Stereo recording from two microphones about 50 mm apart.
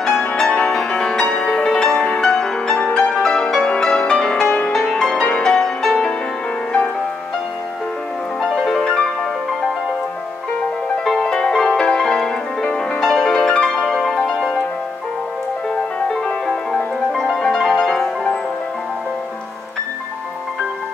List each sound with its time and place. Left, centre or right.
0.6 s music: centre
2.9 s music: left
3.2 s music: centre
8.4 s music: centre
11.1 s music: centre
13.3 s music: centre
16.4 s music: centre